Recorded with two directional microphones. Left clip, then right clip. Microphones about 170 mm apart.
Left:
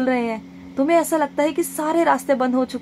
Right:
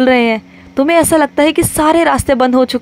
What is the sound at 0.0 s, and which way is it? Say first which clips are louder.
A woman's voice: right 11 dB; 30° right (ahead or behind).